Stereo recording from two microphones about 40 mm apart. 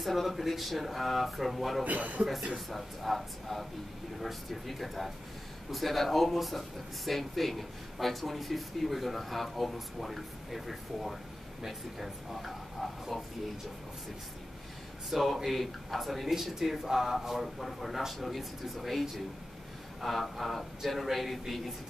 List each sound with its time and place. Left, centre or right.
0.0 s speech: centre
1.9 s speech: right
2.5 s speech: centre
15.0 s speech: centre